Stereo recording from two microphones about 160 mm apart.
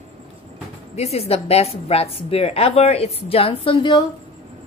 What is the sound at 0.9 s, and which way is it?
A woman's voice, 40° left (ahead or behind).